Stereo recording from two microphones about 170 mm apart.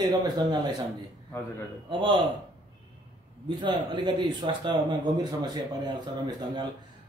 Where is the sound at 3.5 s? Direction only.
25° right (ahead or behind).